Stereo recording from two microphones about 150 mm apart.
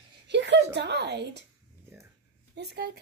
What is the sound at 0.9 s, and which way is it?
Speech, 90° right.